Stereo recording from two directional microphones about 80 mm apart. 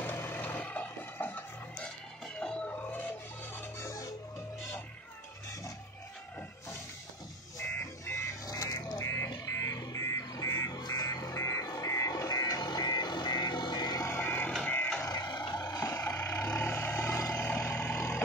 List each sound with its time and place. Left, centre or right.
0.0 s vehicle: left
2.4 s a sound: centre
3.8 s music: left
7.5 s music: left
8.5 s a sound: left
9.5 s music: left
10.8 s a sound: left
14.0 s vehicle: left
15.0 s music: left
15.8 s vehicle: left